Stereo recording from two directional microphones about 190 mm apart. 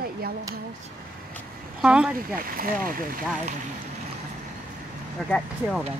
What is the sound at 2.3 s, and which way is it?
Speech, 50° right (ahead or behind).